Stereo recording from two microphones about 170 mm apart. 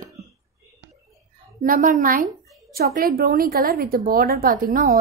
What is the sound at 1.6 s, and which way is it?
A woman's voice, 50° right (ahead or behind).